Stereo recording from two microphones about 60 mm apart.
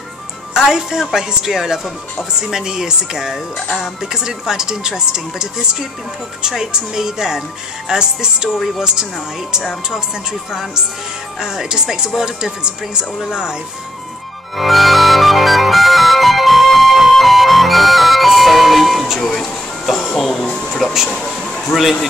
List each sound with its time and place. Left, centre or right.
0.6 s speech: centre
10.5 s speech: centre
14.6 s music: centre
21.1 s a sound: centre